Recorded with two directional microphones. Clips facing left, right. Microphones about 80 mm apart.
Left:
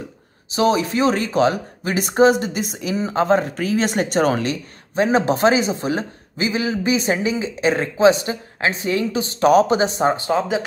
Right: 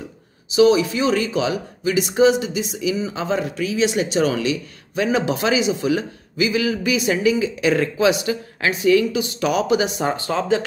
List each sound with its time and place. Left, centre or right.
0.5 s speech: left